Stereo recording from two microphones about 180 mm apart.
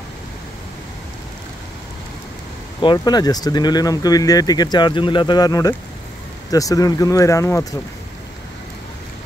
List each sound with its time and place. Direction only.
2.8 s speech: 25° left (ahead or behind)